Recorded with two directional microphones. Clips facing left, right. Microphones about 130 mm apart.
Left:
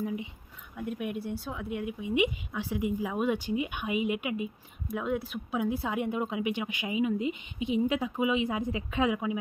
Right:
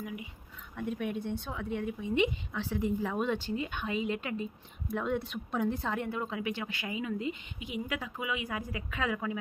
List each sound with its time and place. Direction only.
0.0 s speech: 25° left (ahead or behind)
0.7 s speech: 5° left (ahead or behind)